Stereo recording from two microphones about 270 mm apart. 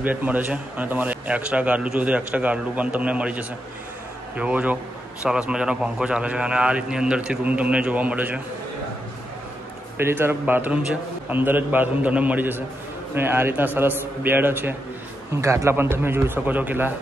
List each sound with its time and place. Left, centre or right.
0.0 s speech: centre
9.9 s a man's voice: centre